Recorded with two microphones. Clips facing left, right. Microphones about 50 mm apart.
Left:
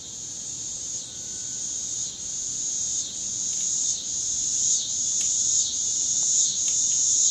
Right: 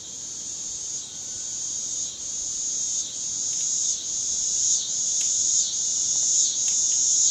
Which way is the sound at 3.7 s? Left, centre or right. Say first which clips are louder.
Even; right.